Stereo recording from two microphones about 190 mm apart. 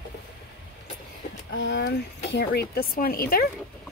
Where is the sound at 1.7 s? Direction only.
60° left (ahead or behind).